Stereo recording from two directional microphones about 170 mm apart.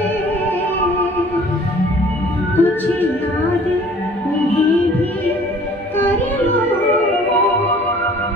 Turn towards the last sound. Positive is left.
turn(degrees=10)  # may be behind; listen again after turning